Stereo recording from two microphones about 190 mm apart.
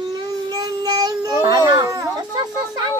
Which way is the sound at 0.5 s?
20° right (ahead or behind).